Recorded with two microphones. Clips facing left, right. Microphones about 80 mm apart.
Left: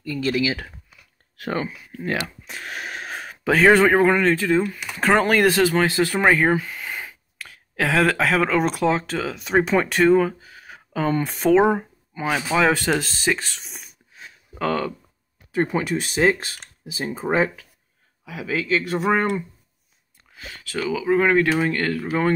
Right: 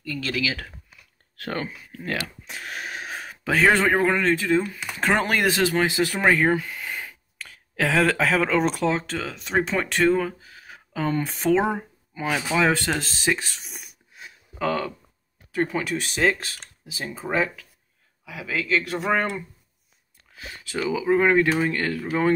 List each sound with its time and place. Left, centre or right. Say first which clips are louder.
0.0 s speech: left 5 dB; centre
1.3 s speech: left 4 dB; centre
2.4 s speech: left 1 dB; centre
6.2 s a sound: left 1 dB; centre
7.1 s speech: left 1 dB; centre
15.5 s speech: left 3 dB; left
18.9 s speech: left 3 dB; centre
20.3 s speech: left 1 dB; centre